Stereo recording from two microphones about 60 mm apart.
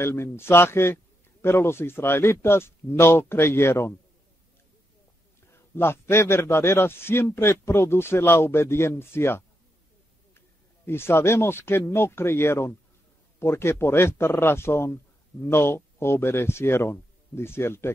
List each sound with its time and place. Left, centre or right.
0.0 s a man's voice: left
5.5 s a man's voice: left
10.9 s a man's voice: left